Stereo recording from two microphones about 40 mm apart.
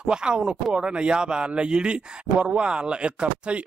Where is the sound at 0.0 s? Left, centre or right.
Right.